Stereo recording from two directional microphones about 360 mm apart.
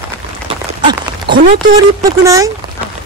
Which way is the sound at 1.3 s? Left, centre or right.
Centre.